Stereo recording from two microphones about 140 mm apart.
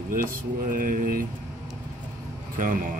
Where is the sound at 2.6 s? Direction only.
75° right (ahead or behind).